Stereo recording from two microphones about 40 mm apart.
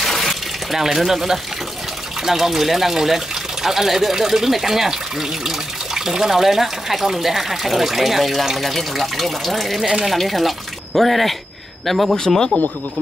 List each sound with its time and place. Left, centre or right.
0.0 s water: centre
0.8 s speech: centre
5.9 s speech: centre